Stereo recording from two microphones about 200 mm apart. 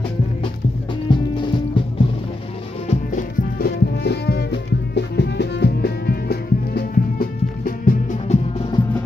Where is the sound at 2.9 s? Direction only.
45° left (ahead or behind); by 8.8 s 25° left (ahead or behind).